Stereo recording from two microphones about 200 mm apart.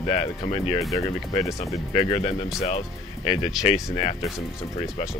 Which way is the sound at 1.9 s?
30° left (ahead or behind).